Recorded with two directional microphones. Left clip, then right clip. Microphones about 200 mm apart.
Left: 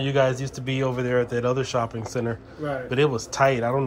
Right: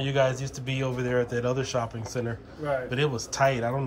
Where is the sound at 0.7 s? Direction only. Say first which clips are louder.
Left 4 dB; 10° right (ahead or behind).